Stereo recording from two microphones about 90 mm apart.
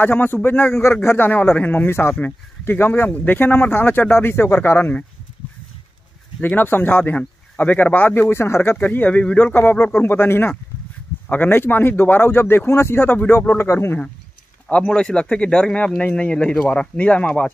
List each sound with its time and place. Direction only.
0.0 s speech: 20° left (ahead or behind)
6.4 s speech: 20° left (ahead or behind)
8.7 s speech: 15° left (ahead or behind)